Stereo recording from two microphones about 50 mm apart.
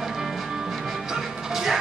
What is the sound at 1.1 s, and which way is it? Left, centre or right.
Music, centre.